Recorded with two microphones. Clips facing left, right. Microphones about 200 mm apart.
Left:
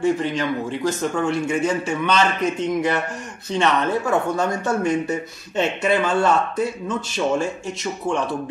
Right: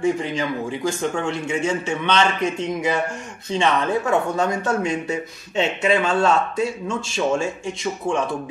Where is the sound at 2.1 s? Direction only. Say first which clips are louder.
Right 1 dB; 5° left (ahead or behind).